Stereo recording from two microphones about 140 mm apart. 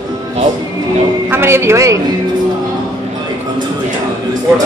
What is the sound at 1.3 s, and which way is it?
Speech, 15° right (ahead or behind).